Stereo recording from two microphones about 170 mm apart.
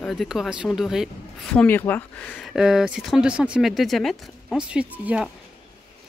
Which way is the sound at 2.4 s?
Centre (ahead or behind).